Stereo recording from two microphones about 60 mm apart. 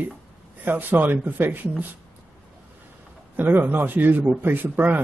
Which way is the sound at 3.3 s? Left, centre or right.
Right.